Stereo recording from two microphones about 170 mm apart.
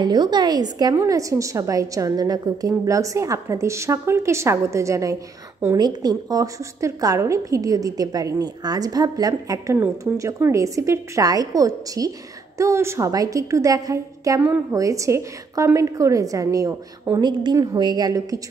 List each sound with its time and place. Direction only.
0.0 s a woman's voice: 25° right (ahead or behind)